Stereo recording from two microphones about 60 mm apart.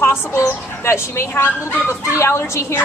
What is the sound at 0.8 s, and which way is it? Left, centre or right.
A woman's voice, left.